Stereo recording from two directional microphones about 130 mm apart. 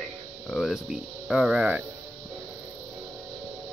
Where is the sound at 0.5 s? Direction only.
Centre (ahead or behind).